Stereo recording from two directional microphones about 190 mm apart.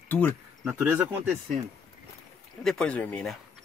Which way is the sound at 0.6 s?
10° right (ahead or behind).